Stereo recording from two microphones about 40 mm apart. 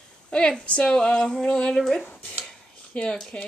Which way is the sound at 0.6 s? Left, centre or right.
Left.